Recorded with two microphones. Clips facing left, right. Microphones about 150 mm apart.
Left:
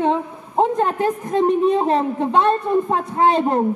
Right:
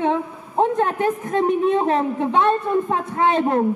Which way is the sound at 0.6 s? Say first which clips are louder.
Left 1 dB; centre (ahead or behind).